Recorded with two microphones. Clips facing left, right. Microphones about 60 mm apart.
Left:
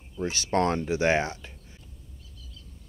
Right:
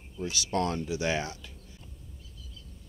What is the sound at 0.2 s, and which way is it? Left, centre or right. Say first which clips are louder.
Speech: left 5 dB; left.